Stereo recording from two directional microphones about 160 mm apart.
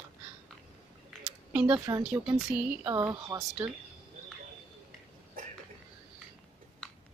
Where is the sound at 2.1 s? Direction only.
10° right (ahead or behind).